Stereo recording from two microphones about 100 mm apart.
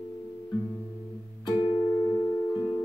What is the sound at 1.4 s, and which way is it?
Music, 50° left (ahead or behind).